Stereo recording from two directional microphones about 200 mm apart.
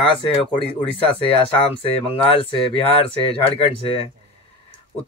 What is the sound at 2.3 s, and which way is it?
Speech, 25° left (ahead or behind).